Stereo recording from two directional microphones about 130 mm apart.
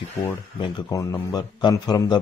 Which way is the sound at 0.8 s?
25° left (ahead or behind).